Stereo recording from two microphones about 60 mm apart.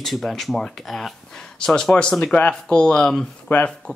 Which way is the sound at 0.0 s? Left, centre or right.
Centre.